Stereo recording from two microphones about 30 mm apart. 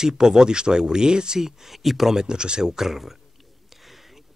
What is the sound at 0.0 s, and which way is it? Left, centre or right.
Speech, right.